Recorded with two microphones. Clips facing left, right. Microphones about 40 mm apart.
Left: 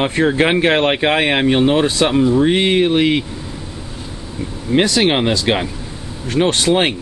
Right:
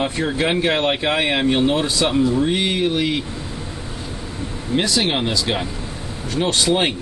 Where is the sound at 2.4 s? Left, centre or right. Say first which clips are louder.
Left 5 dB; left.